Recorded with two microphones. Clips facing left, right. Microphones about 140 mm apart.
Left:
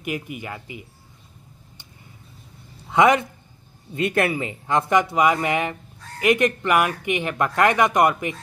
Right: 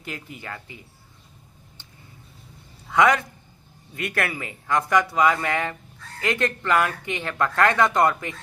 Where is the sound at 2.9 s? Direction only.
20° left (ahead or behind).